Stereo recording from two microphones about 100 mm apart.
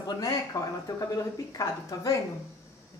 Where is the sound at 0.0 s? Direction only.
35° left (ahead or behind).